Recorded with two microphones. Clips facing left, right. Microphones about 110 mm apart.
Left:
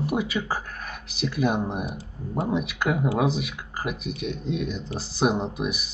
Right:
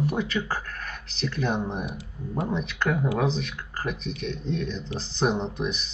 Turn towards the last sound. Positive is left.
turn(degrees=10)  # may be behind; listen again after turning